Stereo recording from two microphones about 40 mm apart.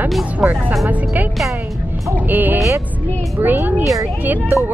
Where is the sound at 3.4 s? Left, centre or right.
Right.